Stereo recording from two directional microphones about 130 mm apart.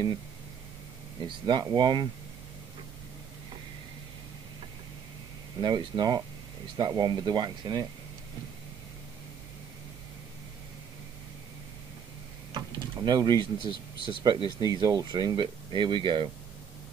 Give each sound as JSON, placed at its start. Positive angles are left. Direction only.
{"t": 1.2, "sound": "speech", "side_deg": -35}
{"t": 5.6, "sound": "speech", "side_deg": -35}
{"t": 12.5, "sound": "a sound", "side_deg": -35}
{"t": 13.6, "sound": "speech", "side_deg": 35}
{"t": 14.2, "sound": "speech", "side_deg": -35}